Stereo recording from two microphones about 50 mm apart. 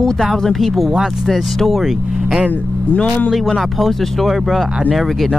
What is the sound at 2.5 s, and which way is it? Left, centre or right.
Speech, left.